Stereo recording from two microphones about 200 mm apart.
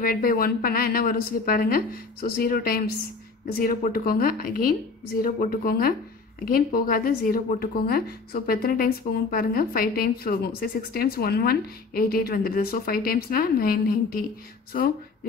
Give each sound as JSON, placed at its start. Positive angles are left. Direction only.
{"t": 0.0, "sound": "a woman's voice", "side_deg": 45}